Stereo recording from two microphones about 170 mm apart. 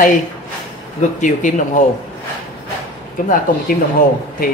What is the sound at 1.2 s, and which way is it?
Speech, 50° left (ahead or behind).